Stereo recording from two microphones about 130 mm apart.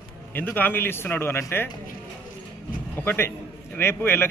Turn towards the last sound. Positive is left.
turn(degrees=20)  # may be behind; listen again after turning